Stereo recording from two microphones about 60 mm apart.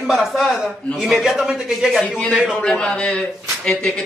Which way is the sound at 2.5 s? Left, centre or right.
Centre.